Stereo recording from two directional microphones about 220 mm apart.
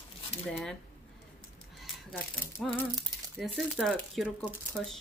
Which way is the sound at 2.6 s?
5° left (ahead or behind).